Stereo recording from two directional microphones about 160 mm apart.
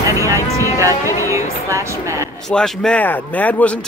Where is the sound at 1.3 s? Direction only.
20° right (ahead or behind).